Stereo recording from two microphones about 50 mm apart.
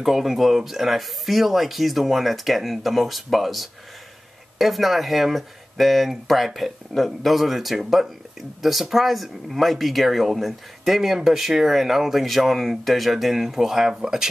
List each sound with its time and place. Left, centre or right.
0.0 s speech: centre